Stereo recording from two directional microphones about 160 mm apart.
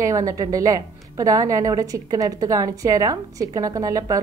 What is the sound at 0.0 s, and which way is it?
A woman's voice, 20° right (ahead or behind).